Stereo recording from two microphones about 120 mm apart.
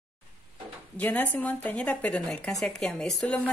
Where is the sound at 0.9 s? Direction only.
10° left (ahead or behind).